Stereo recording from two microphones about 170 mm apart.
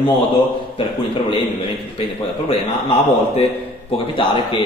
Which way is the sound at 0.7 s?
30° left (ahead or behind).